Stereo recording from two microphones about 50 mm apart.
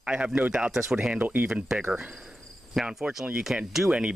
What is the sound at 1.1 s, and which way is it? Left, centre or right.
Speech, right.